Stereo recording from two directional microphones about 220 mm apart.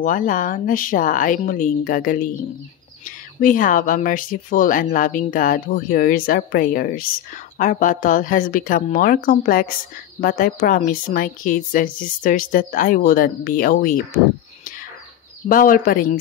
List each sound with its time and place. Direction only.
0.0 s speech: 35° left (ahead or behind)
3.3 s speech: 40° left (ahead or behind)
15.4 s speech: 40° left (ahead or behind)